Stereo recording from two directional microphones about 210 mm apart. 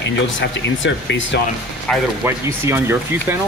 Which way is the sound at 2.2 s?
10° right (ahead or behind).